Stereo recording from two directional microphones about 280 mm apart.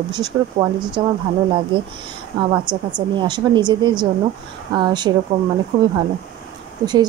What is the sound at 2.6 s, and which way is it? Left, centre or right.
Speech, centre.